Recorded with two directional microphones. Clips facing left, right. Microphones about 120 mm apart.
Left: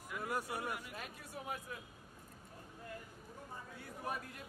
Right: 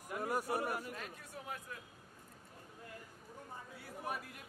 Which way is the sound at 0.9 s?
10° left (ahead or behind).